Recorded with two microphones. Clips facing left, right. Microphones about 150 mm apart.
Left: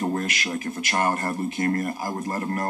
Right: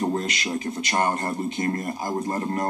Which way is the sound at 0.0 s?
20° right (ahead or behind).